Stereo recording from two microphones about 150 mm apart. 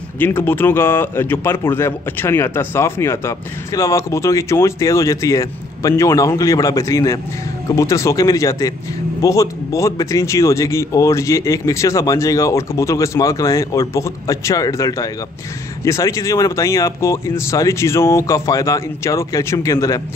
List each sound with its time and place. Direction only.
0.2 s speech: 15° left (ahead or behind)